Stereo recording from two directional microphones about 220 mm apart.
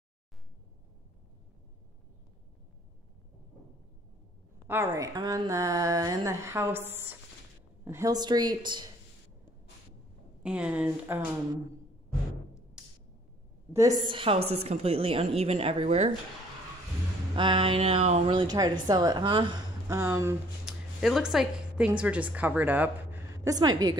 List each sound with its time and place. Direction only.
4.6 s speech: 10° right (ahead or behind)
10.4 s speech: 5° right (ahead or behind)
12.8 s a sound: 5° right (ahead or behind)
13.7 s a woman's voice: 15° right (ahead or behind)
17.4 s a woman's voice: 25° right (ahead or behind)